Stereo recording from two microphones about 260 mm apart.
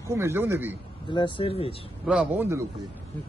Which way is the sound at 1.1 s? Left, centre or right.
Centre.